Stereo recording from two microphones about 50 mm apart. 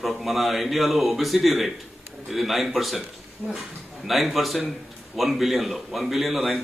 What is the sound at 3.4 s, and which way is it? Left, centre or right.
Speech, right.